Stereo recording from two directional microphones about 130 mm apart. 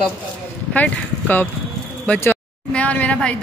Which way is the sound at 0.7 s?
10° left (ahead or behind).